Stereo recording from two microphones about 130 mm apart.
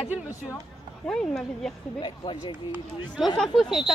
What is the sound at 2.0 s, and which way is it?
Speech, 35° left (ahead or behind).